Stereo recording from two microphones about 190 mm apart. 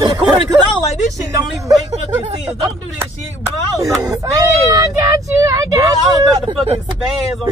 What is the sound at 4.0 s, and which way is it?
Speech, 20° right (ahead or behind).